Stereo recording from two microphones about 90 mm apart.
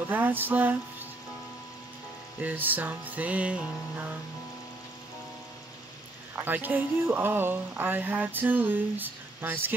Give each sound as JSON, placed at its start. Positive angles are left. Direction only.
{"t": 0.1, "sound": "speech", "side_deg": -20}
{"t": 2.4, "sound": "speech", "side_deg": -20}
{"t": 6.3, "sound": "speech", "side_deg": -20}